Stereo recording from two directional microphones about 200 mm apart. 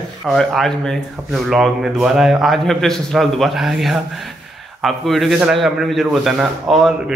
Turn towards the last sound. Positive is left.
turn(degrees=0)  # may be behind; listen again after turning